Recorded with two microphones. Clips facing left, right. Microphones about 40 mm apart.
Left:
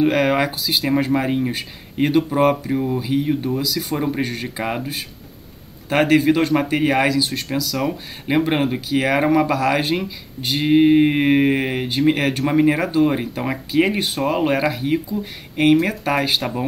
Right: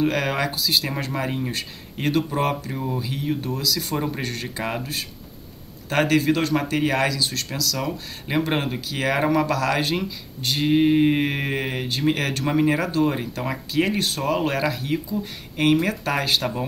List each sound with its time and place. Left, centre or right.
0.0 s speech: centre